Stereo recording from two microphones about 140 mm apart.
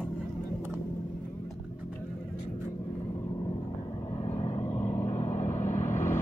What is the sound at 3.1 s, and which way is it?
Vehicle, 25° left (ahead or behind).